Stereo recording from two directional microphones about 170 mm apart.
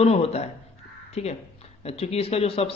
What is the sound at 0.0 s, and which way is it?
Speech, 35° left (ahead or behind).